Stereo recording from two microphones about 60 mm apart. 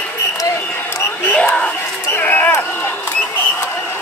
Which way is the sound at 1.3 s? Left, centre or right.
Left.